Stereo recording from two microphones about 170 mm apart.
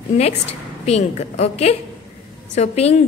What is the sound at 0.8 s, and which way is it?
A woman's voice, 40° left (ahead or behind).